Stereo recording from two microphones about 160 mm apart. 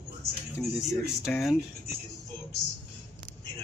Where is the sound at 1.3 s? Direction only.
5° left (ahead or behind).